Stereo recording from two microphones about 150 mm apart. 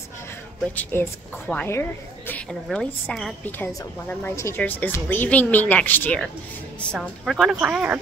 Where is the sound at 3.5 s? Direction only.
15° left (ahead or behind); by 8.0 s 10° right (ahead or behind).